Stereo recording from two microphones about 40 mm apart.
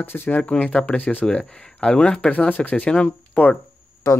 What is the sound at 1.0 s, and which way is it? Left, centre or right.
Speech, left.